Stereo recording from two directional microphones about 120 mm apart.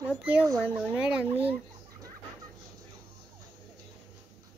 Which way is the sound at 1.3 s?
55° right (ahead or behind).